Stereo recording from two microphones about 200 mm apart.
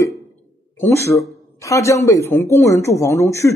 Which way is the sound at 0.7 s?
15° left (ahead or behind).